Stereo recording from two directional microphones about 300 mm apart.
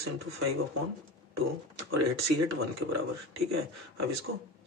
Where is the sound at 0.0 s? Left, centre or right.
Right.